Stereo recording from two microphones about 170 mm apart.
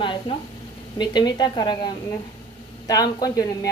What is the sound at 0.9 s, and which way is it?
Speech, 25° left (ahead or behind).